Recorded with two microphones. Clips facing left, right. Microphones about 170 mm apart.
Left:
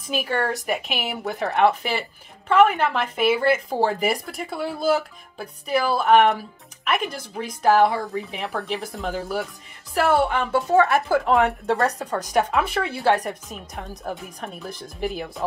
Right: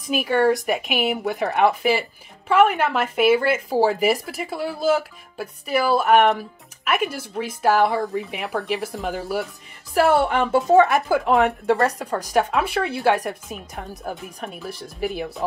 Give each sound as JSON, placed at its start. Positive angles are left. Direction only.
{"t": 0.1, "sound": "a woman's voice", "side_deg": -15}
{"t": 10.4, "sound": "a woman's voice", "side_deg": -20}
{"t": 14.6, "sound": "a woman's voice", "side_deg": -5}